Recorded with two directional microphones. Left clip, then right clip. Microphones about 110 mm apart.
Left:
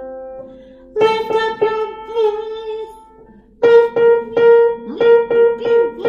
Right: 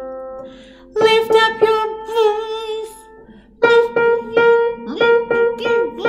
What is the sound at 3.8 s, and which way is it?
Keyboard, centre (ahead or behind).